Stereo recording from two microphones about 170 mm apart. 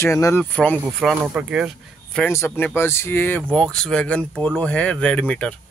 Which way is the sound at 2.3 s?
15° left (ahead or behind).